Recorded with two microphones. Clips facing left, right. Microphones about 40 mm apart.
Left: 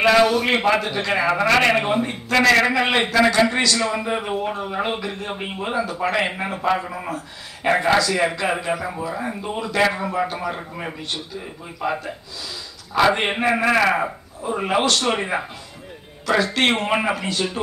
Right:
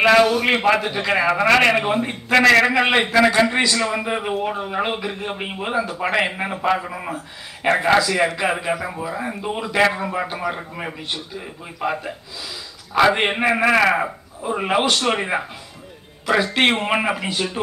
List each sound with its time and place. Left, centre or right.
0.0 s a sound: centre
0.7 s a man's voice: centre
1.7 s a man's voice: centre
10.4 s a man's voice: centre
12.0 s a man's voice: centre
16.5 s a man's voice: centre